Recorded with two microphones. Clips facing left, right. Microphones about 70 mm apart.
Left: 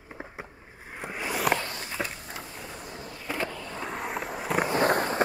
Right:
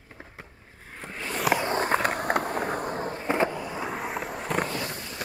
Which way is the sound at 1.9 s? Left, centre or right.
Right.